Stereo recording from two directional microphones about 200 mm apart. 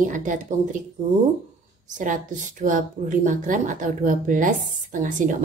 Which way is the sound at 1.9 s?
40° right (ahead or behind).